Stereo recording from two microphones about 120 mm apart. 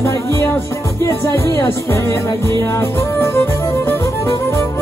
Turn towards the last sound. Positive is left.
turn(degrees=25)  # may be behind; listen again after turning